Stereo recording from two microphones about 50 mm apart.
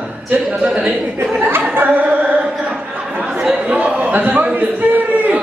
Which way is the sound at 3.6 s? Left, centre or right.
Right.